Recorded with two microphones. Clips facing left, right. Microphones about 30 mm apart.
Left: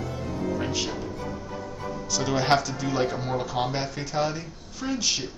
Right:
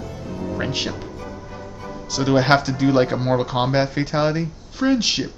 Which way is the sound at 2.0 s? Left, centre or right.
Right.